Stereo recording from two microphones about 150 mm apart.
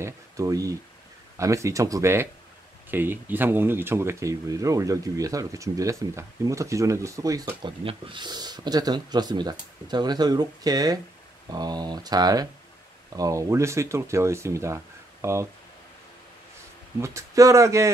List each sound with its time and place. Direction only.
0.0 s speech: 20° right (ahead or behind)
17.0 s speech: 20° right (ahead or behind)